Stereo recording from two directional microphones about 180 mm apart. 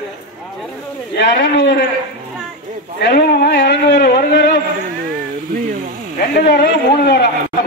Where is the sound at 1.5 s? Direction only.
75° left (ahead or behind).